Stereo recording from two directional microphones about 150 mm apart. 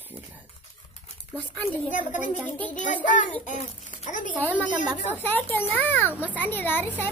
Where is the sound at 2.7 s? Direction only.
60° left (ahead or behind).